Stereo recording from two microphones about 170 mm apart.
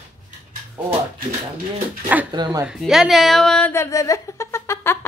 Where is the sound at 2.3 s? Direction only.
25° right (ahead or behind).